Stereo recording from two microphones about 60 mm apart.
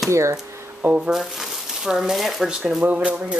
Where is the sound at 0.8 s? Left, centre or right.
Right.